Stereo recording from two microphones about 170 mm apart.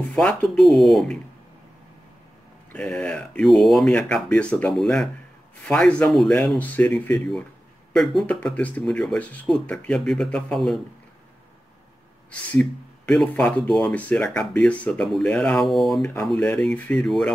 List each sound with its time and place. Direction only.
0.1 s speech: 5° left (ahead or behind)
2.7 s speech: 5° left (ahead or behind)
12.3 s speech: 5° left (ahead or behind)